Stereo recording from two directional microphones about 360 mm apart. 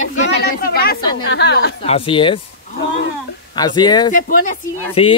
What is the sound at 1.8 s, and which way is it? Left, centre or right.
Speech, centre.